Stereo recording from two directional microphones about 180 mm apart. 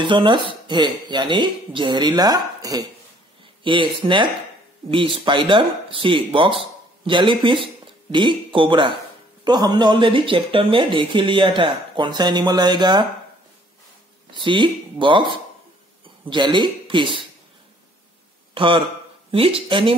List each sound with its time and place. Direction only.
0.0 s speech: 25° right (ahead or behind)
14.3 s speech: 25° right (ahead or behind)
18.5 s a man's voice: 30° right (ahead or behind)